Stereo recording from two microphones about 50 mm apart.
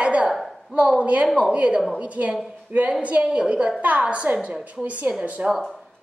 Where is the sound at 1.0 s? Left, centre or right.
Right.